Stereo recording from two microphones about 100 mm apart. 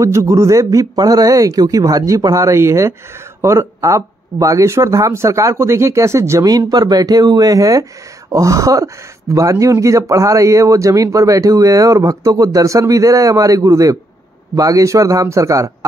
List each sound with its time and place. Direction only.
0.0 s speech: 30° right (ahead or behind)